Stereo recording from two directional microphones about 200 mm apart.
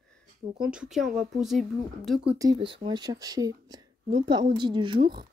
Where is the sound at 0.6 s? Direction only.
5° right (ahead or behind).